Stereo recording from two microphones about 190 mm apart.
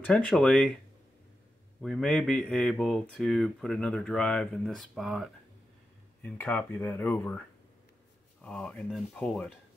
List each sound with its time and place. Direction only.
0.0 s speech: 5° left (ahead or behind)
1.8 s speech: centre (ahead or behind)
6.2 s speech: 10° left (ahead or behind)